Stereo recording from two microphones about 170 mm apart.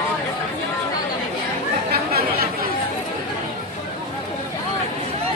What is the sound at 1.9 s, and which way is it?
Chatter, 65° right (ahead or behind).